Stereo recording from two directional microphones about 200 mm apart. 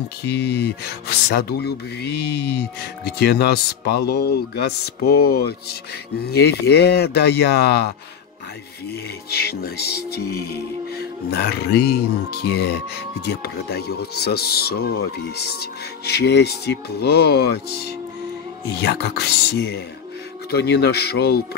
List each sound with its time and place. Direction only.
0.2 s speech: 55° left (ahead or behind)
9.3 s speech: 50° left (ahead or behind)
18.8 s speech: 55° left (ahead or behind)